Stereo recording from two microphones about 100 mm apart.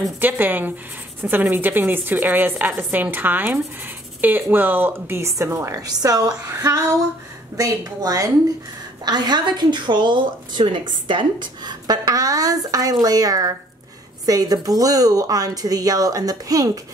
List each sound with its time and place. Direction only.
0.2 s a woman's voice: 20° right (ahead or behind); by 16.8 s 35° right (ahead or behind)